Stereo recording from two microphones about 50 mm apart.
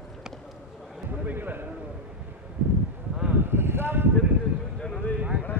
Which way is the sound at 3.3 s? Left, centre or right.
Right.